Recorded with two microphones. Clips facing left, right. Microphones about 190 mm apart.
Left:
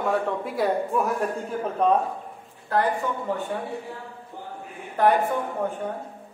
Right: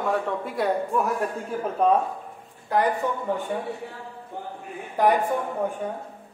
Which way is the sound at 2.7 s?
15° right (ahead or behind).